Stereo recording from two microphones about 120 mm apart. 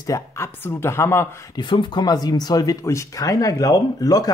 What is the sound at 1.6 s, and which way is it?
Speech, 40° left (ahead or behind).